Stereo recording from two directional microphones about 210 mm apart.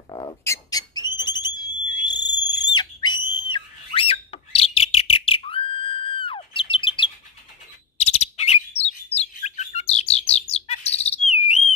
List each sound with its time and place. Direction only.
0.1 s whistle: 20° left (ahead or behind)
2.0 s a sound: 20° left (ahead or behind)
4.6 s bird: 30° left (ahead or behind)